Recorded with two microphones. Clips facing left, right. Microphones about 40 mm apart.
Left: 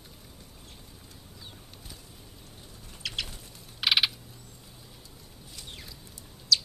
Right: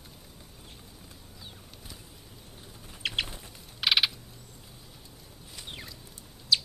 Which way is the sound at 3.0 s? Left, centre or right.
Right.